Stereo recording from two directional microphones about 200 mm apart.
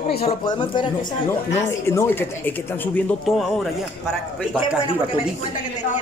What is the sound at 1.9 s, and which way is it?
Speech, 10° left (ahead or behind).